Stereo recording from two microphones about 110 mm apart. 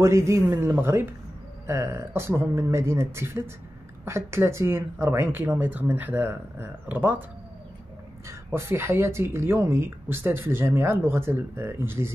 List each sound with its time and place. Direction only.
0.0 s speech: 25° right (ahead or behind)
8.5 s speech: 20° right (ahead or behind)